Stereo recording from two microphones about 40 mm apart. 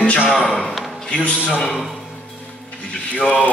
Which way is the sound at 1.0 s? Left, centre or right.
Left.